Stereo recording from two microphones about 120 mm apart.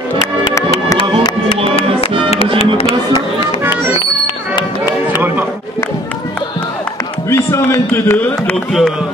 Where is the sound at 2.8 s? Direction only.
55° left (ahead or behind).